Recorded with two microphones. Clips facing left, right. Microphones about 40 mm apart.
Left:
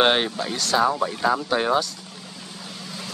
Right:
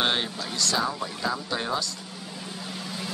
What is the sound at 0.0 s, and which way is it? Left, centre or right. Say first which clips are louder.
Speech: left 7 dB; left.